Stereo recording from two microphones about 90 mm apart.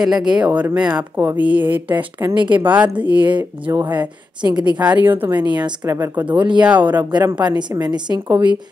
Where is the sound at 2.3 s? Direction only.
60° right (ahead or behind).